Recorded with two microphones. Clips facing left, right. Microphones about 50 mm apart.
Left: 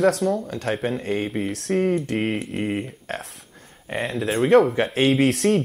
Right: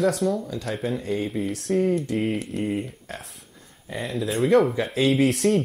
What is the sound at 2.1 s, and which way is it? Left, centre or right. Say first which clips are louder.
Speech: left 1 dB; left.